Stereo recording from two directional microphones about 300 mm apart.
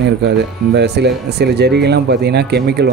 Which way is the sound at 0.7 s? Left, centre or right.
Right.